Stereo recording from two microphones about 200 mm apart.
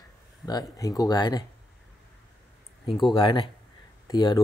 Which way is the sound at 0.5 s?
20° left (ahead or behind).